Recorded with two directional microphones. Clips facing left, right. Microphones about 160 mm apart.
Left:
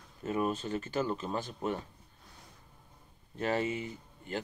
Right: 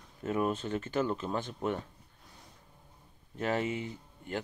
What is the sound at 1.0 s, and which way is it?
Speech, 10° left (ahead or behind).